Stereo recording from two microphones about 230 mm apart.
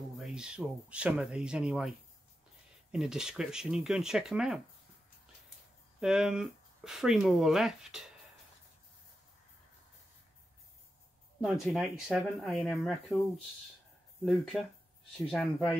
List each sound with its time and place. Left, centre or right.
0.2 s speech: centre
5.9 s speech: centre
11.5 s speech: centre
14.2 s speech: centre